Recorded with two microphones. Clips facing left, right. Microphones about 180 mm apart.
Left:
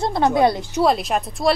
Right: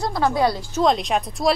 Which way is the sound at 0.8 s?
5° left (ahead or behind).